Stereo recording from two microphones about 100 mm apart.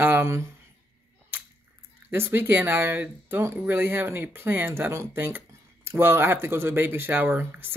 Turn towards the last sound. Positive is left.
turn(degrees=-25)  # may be behind; listen again after turning